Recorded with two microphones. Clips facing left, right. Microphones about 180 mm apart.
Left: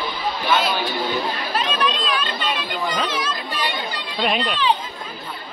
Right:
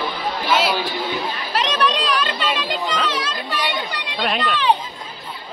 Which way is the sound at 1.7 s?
85° right.